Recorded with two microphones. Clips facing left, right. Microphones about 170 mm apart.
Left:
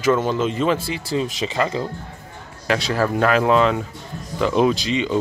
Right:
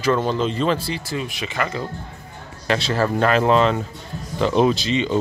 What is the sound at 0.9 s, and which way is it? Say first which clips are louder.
Speech: left 3 dB; 25° left (ahead or behind).